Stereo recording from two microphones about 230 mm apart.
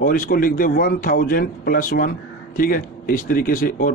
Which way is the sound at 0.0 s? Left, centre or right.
Left.